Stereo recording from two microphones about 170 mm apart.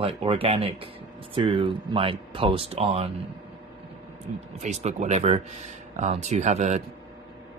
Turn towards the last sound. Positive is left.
turn(degrees=-40)  # may be behind; listen again after turning